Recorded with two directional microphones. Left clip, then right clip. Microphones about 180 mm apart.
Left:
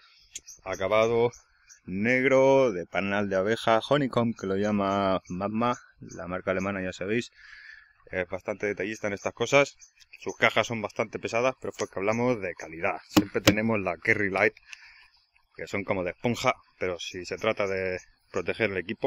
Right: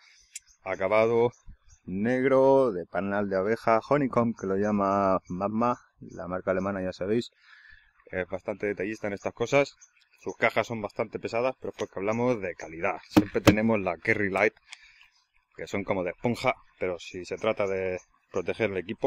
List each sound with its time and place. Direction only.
0.3 s speech: centre (ahead or behind)
3.7 s speech: 20° left (ahead or behind)
7.1 s speech: 5° right (ahead or behind)
15.5 s speech: 5° right (ahead or behind)